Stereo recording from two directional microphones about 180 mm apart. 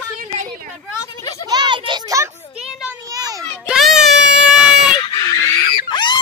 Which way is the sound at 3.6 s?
Centre (ahead or behind).